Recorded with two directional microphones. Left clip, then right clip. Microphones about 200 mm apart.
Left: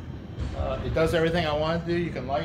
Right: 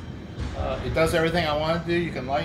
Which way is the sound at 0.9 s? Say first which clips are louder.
Right 2 dB; 5° left (ahead or behind).